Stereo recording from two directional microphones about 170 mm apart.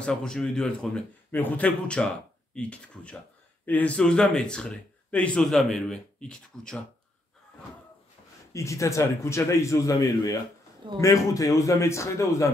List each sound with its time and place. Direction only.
0.0 s speech: 5° left (ahead or behind)
8.5 s a man's voice: 15° left (ahead or behind)